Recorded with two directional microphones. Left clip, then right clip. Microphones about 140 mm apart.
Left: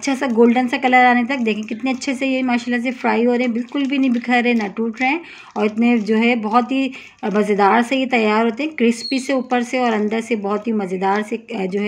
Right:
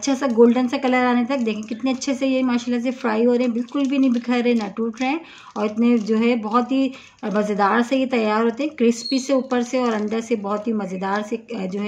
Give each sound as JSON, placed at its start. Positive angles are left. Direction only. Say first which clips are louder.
{"t": 0.1, "sound": "speech", "louder": "left 1 dB", "side_deg": 20}